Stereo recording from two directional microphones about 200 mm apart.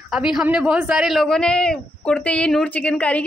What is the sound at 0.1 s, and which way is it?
Speech, 5° right (ahead or behind).